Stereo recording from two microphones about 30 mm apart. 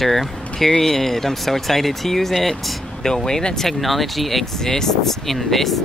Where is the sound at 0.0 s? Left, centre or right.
Centre.